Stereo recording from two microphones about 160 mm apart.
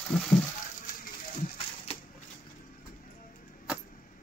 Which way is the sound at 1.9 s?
40° left (ahead or behind).